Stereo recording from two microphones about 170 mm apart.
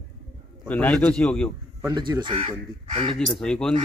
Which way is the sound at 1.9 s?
25° right (ahead or behind).